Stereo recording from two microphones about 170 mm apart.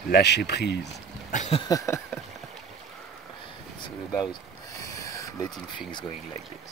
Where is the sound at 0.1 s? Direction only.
80° left.